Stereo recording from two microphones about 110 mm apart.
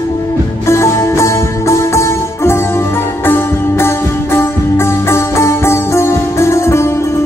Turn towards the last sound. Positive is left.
turn(degrees=25)  # may be behind; listen again after turning